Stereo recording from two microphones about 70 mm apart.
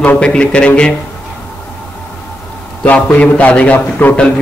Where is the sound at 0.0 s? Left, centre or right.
Centre.